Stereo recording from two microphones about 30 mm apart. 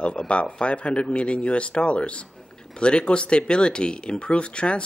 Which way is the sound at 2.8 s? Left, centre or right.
Left.